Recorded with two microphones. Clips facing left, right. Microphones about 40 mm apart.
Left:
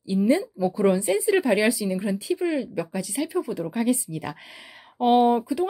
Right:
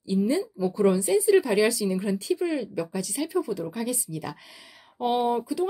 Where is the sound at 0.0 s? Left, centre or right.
Left.